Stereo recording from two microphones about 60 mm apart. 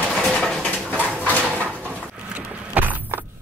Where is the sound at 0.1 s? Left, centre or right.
Centre.